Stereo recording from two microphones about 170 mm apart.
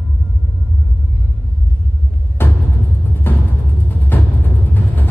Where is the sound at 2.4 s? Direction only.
10° left (ahead or behind).